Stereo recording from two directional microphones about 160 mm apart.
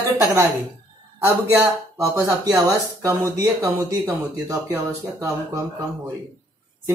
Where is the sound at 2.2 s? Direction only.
20° right (ahead or behind).